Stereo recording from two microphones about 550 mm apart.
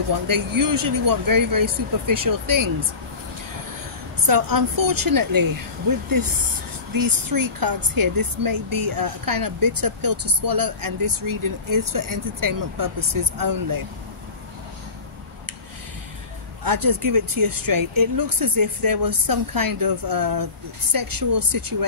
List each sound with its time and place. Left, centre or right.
0.3 s a woman's voice: right
4.3 s a woman's voice: right
16.6 s a woman's voice: right